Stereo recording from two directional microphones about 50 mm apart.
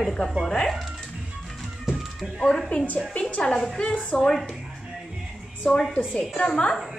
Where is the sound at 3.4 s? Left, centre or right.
Centre.